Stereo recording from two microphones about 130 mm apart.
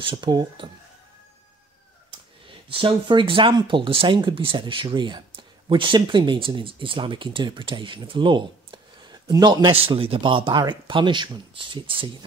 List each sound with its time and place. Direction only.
0.0 s speech: 35° right (ahead or behind)
2.7 s speech: 40° right (ahead or behind)